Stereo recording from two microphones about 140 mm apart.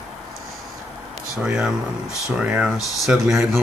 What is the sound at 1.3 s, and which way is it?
Speech, 5° right (ahead or behind).